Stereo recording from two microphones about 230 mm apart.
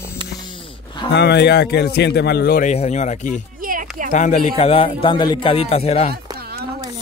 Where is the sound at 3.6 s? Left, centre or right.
Right.